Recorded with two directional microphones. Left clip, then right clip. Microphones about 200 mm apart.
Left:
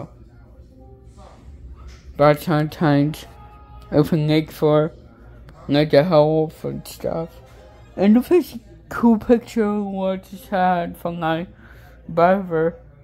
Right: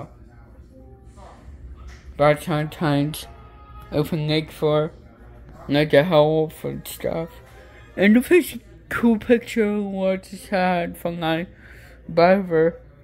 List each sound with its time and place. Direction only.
2.1 s speech: 30° left (ahead or behind)
7.0 s speech: centre (ahead or behind)
9.3 s speech: 50° left (ahead or behind)
9.6 s speech: 5° left (ahead or behind)